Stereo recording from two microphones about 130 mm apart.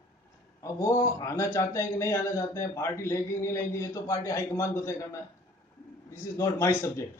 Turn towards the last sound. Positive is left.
turn(degrees=20)  # may be behind; listen again after turning